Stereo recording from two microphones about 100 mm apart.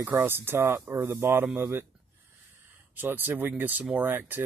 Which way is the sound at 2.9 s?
20° right (ahead or behind).